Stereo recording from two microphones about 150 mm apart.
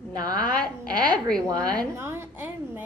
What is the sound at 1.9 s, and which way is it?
Speech, 15° right (ahead or behind).